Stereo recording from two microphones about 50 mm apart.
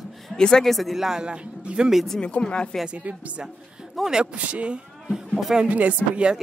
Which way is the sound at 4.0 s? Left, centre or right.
Centre.